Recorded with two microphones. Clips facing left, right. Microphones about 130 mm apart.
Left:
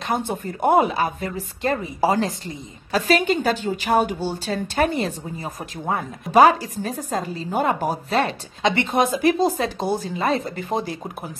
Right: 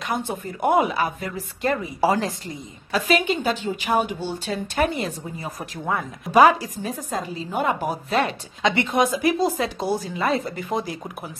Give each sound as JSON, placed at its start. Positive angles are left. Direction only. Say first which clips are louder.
{"t": 0.6, "sound": "a woman's voice", "louder": "left 2 dB", "side_deg": 35}
{"t": 2.9, "sound": "a woman's voice", "louder": "left 2 dB", "side_deg": 40}
{"t": 7.0, "sound": "a woman's voice", "louder": "left 2 dB", "side_deg": 45}
{"t": 9.4, "sound": "a woman's voice", "louder": "left 2 dB", "side_deg": 30}